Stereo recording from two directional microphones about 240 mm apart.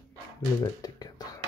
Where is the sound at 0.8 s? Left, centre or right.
Centre.